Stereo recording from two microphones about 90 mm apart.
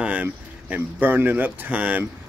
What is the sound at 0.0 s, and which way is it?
A man's voice, 15° right (ahead or behind).